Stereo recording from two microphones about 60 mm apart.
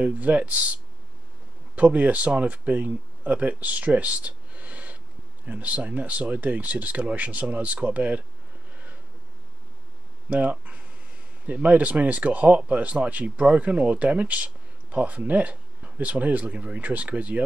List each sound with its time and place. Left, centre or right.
0.0 s speech: right
1.8 s speech: right
10.3 s speech: right